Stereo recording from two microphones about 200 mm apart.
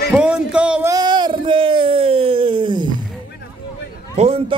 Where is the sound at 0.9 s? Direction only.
20° right (ahead or behind).